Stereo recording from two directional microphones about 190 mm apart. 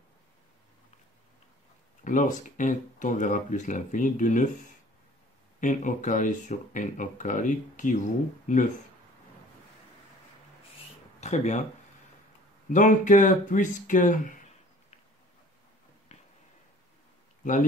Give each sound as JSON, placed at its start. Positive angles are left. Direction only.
{"t": 2.0, "sound": "speech", "side_deg": 40}
{"t": 5.6, "sound": "speech", "side_deg": 40}
{"t": 11.1, "sound": "speech", "side_deg": 35}
{"t": 12.6, "sound": "speech", "side_deg": 45}
{"t": 16.1, "sound": "a sound", "side_deg": 35}